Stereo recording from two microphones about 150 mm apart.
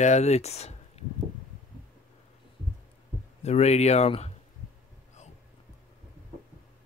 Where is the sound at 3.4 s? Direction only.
45° left (ahead or behind).